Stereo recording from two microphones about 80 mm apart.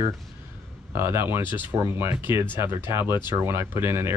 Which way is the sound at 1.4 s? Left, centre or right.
Left.